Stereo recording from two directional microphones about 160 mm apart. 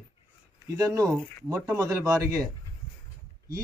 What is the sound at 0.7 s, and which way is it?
Speech, 20° right (ahead or behind).